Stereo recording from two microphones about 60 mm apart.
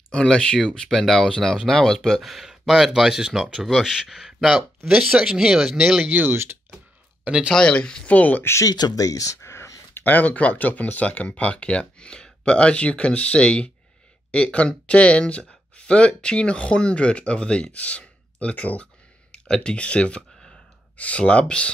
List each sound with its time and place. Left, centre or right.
0.1 s speech: centre
6.0 s speech: right
6.3 s speech: right
7.2 s speech: centre
7.5 s speech: centre
8.2 s speech: left
8.6 s speech: left
9.9 s speech: left
19.3 s speech: centre